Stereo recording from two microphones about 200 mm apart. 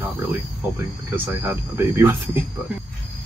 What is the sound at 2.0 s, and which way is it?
Speech, 10° right (ahead or behind).